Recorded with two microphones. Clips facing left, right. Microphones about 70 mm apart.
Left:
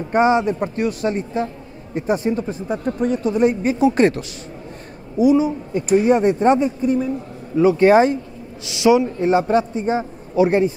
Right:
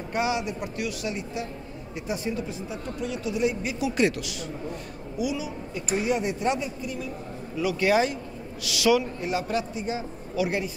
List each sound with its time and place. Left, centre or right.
0.1 s speech: left